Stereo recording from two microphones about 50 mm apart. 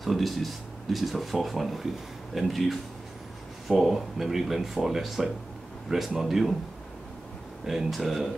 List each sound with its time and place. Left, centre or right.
0.0 s speech: centre
7.6 s speech: centre